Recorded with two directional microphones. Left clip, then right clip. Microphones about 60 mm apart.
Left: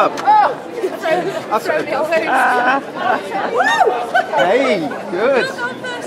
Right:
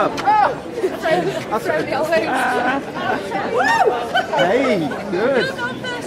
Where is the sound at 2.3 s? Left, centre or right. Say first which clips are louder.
Left 5 dB; left.